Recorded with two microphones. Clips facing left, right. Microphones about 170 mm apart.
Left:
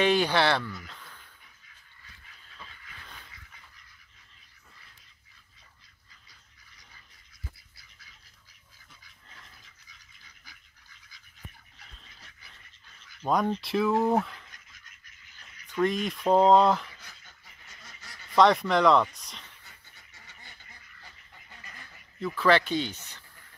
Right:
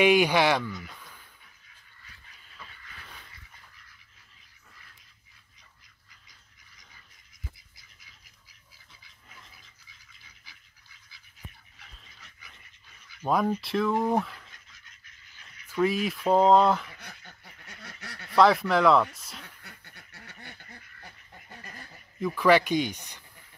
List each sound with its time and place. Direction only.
0.0 s speech: 10° right (ahead or behind)
0.8 s a sound: 10° right (ahead or behind)
13.0 s speech: 5° right (ahead or behind)
15.6 s speech: 5° right (ahead or behind)
17.0 s duck: 60° right (ahead or behind)
18.3 s speech: centre (ahead or behind)
19.4 s duck: 65° right (ahead or behind)
21.0 s dog: 50° right (ahead or behind)
22.2 s speech: 15° right (ahead or behind)